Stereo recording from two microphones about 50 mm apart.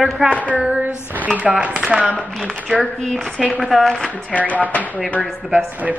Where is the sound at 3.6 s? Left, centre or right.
Centre.